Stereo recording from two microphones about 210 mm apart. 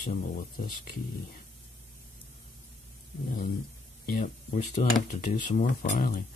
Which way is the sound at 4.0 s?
40° left (ahead or behind).